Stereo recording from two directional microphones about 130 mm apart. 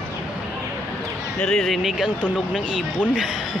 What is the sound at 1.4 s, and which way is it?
Speech, 5° left (ahead or behind).